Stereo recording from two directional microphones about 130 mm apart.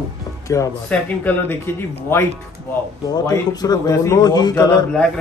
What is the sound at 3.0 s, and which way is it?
A man's voice, 25° left (ahead or behind).